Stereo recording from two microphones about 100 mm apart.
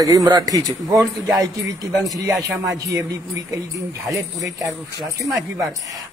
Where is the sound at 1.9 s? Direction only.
Centre (ahead or behind).